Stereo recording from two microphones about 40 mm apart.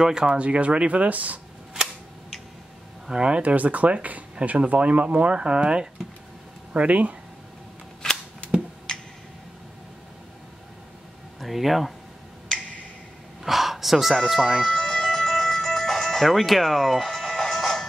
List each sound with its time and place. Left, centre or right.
0.0 s speech: centre
0.3 s speech: right
3.1 s speech: right
3.5 s speech: right
6.7 s speech: right
11.3 s speech: centre
13.4 s a sound: centre
14.3 s speech: centre
14.7 s music: centre